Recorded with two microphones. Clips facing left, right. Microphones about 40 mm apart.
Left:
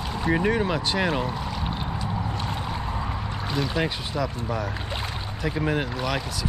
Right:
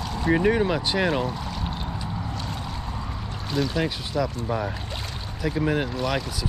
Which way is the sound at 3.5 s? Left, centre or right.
Centre.